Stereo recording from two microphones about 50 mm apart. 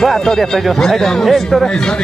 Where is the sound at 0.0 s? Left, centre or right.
Centre.